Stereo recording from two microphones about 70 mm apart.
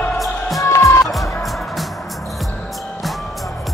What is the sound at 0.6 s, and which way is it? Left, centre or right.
Music, left.